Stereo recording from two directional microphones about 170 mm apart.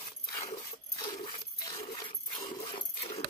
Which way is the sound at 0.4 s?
20° left (ahead or behind).